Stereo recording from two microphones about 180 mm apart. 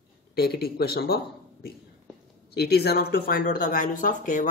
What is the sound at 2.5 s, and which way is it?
Speech, 60° left (ahead or behind).